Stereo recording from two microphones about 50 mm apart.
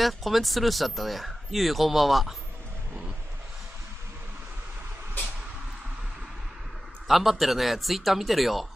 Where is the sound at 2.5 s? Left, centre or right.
Right.